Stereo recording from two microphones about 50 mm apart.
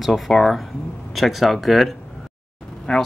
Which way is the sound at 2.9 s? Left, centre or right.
Centre.